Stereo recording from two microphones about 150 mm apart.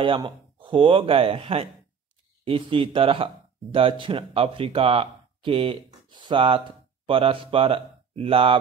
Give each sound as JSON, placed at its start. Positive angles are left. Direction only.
{"t": 0.0, "sound": "speech", "side_deg": -35}